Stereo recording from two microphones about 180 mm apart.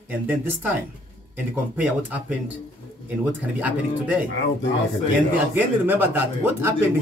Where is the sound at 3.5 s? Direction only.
5° right (ahead or behind).